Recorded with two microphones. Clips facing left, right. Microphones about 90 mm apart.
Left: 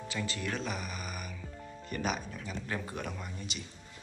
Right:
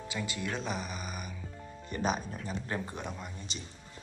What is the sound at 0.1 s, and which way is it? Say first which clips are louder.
Speech: even; 15° right (ahead or behind).